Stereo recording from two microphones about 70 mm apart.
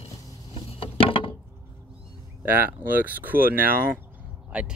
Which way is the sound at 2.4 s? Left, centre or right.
Right.